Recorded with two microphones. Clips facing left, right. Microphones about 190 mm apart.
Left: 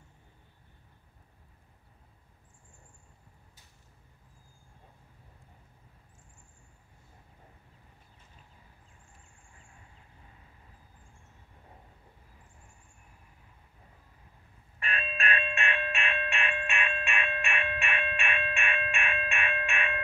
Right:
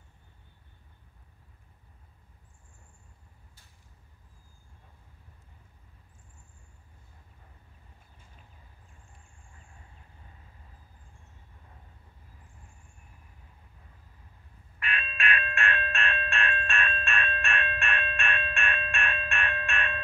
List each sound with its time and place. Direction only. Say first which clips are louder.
14.8 s doorbell: even; 35° left (ahead or behind)
15.5 s music: right 1 dB; 15° left (ahead or behind)